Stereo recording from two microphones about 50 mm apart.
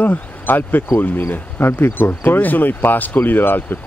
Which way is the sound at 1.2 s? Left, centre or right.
Left.